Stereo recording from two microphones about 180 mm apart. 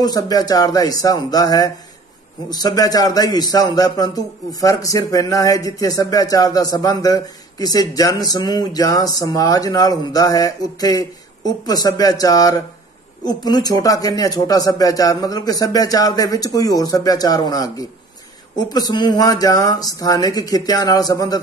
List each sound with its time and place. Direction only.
0.0 s a man's voice: 20° left (ahead or behind)